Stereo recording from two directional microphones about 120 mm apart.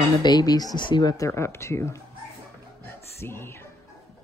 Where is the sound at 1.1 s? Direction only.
25° left (ahead or behind).